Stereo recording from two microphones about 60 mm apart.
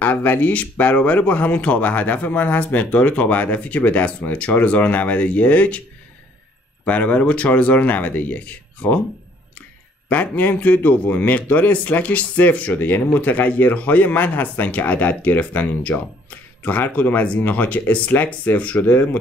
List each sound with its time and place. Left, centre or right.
0.0 s speech: left
6.8 s speech: left
10.0 s speech: left